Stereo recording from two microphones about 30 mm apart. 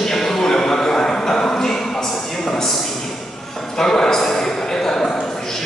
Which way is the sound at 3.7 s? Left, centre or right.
Centre.